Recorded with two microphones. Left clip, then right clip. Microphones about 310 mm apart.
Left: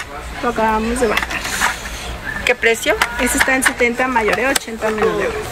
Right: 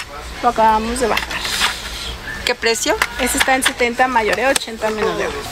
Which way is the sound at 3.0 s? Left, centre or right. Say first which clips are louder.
Left 1 dB; centre.